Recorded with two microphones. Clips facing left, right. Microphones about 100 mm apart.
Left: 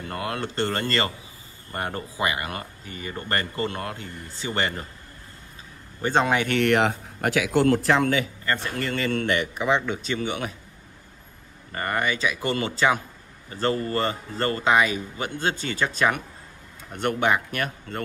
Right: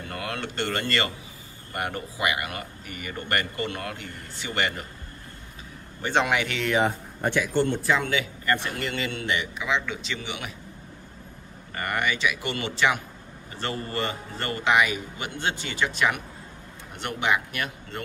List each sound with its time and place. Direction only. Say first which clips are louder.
0.0 s speech: left 3 dB; 30° left (ahead or behind)
6.0 s speech: left 2 dB; 35° left (ahead or behind)
6.5 s speech: left 4 dB; 60° left (ahead or behind); by 8.0 s 80° left
8.0 s a man's voice: left 4 dB; 45° left (ahead or behind)
11.7 s speech: left 2 dB; 30° left (ahead or behind)